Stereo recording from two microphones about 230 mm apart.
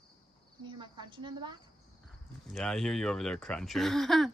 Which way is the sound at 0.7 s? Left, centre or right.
Right.